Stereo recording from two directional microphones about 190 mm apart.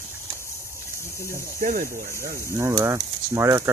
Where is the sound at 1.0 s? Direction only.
15° left (ahead or behind).